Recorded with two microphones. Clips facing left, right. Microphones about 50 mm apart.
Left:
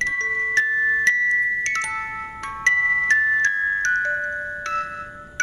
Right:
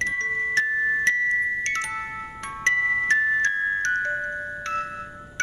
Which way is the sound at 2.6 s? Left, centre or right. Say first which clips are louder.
Left 3 dB; left.